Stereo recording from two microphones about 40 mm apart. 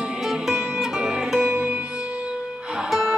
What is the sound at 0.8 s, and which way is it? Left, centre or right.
Music, centre.